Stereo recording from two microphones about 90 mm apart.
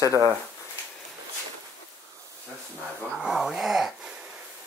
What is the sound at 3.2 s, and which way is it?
Wail, 5° right (ahead or behind).